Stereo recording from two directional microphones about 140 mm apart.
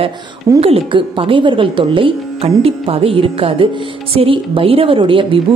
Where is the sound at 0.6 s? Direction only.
45° right (ahead or behind).